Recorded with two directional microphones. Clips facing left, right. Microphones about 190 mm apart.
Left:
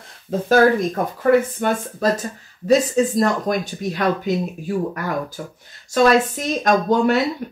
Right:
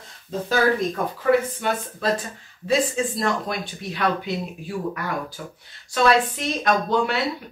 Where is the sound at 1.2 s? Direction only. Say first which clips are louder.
Left 4 dB; 50° left (ahead or behind).